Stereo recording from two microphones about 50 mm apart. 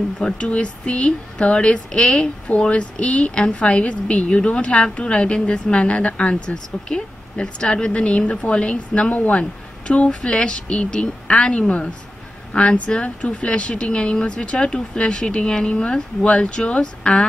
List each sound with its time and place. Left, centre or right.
0.4 s speech: left